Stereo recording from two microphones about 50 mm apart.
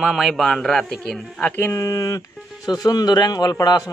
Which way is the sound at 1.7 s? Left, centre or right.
Left.